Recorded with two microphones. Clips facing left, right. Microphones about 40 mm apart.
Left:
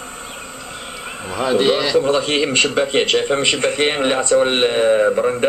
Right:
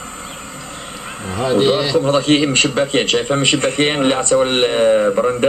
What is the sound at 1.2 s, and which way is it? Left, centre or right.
Speech, centre.